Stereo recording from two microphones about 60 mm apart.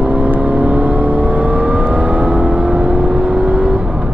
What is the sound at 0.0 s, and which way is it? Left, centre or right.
Vehicle, right.